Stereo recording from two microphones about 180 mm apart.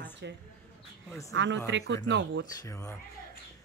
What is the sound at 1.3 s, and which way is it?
Speech, 90° right.